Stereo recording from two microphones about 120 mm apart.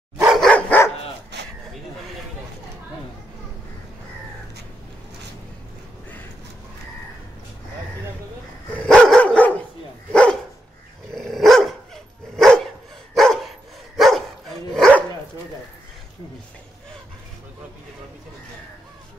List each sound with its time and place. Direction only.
0.3 s dog: 5° left (ahead or behind)
8.8 s dog: 5° left (ahead or behind)
11.1 s dog: centre (ahead or behind)